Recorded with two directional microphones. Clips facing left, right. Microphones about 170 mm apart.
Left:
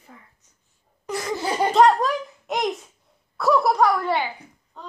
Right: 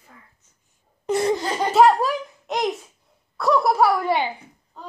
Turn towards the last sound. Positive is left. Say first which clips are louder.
# right 1 dB
turn(degrees=-10)  # may be behind; listen again after turning